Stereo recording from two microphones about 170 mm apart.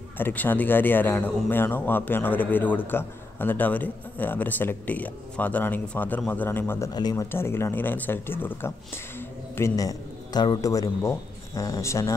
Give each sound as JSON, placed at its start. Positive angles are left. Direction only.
{"t": 0.2, "sound": "a man's voice", "side_deg": 10}
{"t": 6.9, "sound": "a man's voice", "side_deg": 25}